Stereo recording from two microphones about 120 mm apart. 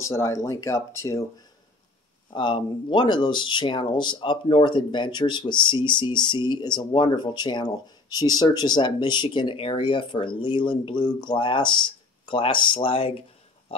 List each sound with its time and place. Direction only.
0.0 s speech: 25° left (ahead or behind)
2.3 s speech: 45° left (ahead or behind)